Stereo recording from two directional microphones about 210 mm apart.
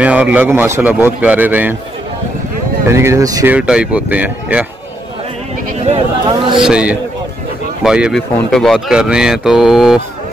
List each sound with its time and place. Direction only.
0.0 s speech: 5° right (ahead or behind)
2.9 s speech: 15° right (ahead or behind)
5.9 s speech: 25° right (ahead or behind)
6.6 s speech: 5° right (ahead or behind)